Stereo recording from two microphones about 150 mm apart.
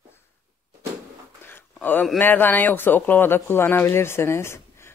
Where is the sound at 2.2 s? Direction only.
15° left (ahead or behind).